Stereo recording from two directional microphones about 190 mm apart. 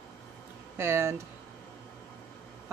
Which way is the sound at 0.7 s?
15° right (ahead or behind).